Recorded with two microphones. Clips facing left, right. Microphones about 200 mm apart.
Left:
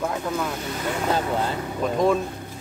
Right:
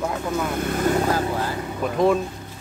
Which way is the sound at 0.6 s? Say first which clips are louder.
Right 7 dB; 50° right (ahead or behind).